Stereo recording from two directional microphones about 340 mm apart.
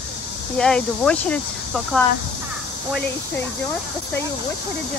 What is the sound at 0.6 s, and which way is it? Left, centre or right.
Speech, centre.